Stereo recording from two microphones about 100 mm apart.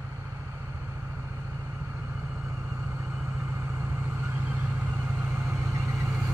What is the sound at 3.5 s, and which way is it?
Vehicle, 25° right (ahead or behind).